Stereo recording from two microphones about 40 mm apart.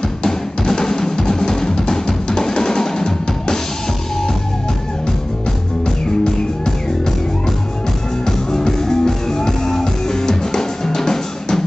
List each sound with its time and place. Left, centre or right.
0.2 s music: centre
8.3 s music: centre